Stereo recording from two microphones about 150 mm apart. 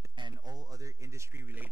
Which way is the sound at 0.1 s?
30° right (ahead or behind).